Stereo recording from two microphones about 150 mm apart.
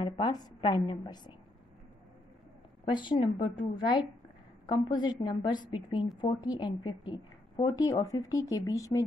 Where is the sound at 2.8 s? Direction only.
30° left (ahead or behind).